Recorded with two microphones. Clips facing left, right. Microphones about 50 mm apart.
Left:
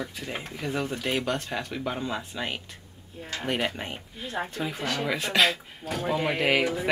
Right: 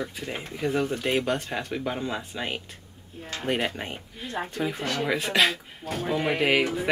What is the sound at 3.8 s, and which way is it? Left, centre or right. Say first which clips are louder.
Speech: right 1 dB; centre.